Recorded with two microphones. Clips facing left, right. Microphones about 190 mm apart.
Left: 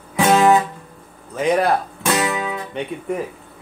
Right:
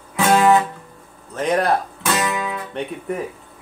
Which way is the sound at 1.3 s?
Centre (ahead or behind).